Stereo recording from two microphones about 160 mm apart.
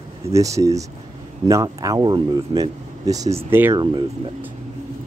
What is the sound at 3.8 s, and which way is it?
Speech, 30° right (ahead or behind).